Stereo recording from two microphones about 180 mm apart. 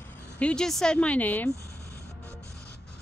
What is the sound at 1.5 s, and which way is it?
Music, 15° right (ahead or behind).